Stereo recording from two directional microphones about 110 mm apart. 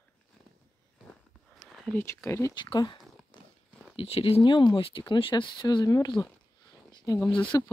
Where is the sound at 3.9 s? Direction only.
55° left (ahead or behind); by 6.1 s 40° left (ahead or behind).